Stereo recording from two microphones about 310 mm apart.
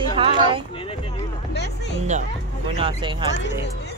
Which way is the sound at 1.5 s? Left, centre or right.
Left.